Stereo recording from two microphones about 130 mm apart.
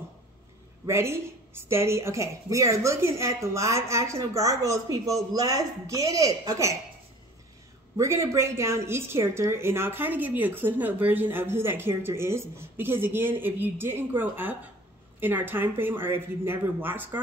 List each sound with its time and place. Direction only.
0.8 s a woman's voice: 20° right (ahead or behind)
8.0 s a woman's voice: 25° right (ahead or behind)